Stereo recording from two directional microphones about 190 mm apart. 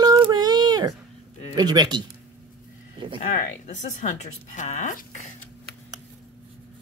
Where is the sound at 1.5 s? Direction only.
20° right (ahead or behind).